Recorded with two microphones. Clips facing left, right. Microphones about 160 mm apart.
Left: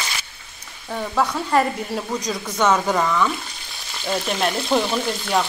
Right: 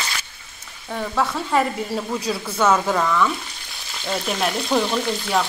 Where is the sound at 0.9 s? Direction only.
Centre (ahead or behind).